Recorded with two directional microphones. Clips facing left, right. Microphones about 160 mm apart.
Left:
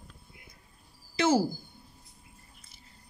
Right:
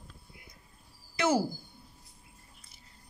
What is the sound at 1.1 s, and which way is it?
Speech, 25° left (ahead or behind).